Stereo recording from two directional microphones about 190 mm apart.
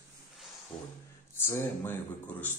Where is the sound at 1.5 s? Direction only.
10° left (ahead or behind).